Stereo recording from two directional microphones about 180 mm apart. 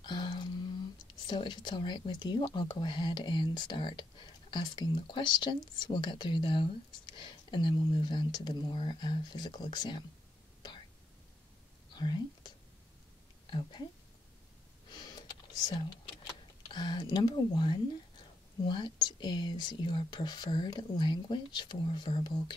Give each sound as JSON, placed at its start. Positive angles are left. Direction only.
{"t": 0.0, "sound": "a sound", "side_deg": 25}
{"t": 1.0, "sound": "speech", "side_deg": 25}
{"t": 11.9, "sound": "whispering", "side_deg": 25}
{"t": 13.5, "sound": "speech", "side_deg": 25}
{"t": 14.9, "sound": "computer keyboard", "side_deg": 25}
{"t": 16.7, "sound": "speech", "side_deg": 25}